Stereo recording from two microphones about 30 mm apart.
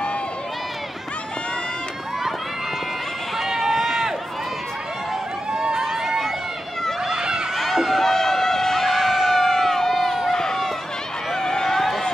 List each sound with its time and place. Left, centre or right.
3.3 s run: centre
5.5 s run: right
7.1 s run: right
7.5 s run: centre
8.9 s a sound: centre
10.3 s run: centre